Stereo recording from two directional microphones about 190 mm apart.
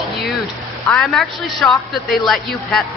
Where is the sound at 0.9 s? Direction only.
Centre (ahead or behind).